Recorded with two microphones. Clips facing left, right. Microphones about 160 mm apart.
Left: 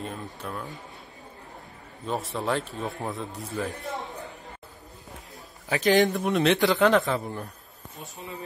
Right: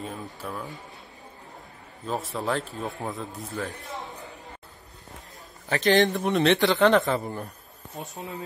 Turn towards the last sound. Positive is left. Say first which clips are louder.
# right 1 dB
turn(degrees=0)  # may be behind; listen again after turning